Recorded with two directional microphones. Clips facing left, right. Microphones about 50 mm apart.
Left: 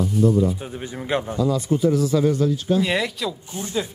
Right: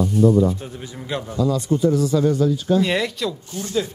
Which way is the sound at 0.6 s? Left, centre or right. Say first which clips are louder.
Left 2 dB; centre.